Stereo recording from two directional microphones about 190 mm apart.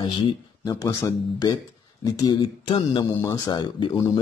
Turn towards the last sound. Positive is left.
turn(degrees=20)  # may be behind; listen again after turning